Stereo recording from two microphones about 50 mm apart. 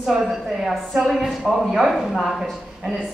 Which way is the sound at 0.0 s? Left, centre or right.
Centre.